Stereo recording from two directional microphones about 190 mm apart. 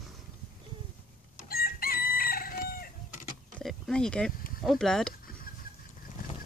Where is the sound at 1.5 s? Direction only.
50° left (ahead or behind).